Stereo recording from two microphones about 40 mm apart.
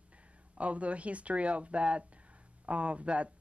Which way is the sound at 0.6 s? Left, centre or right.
Right.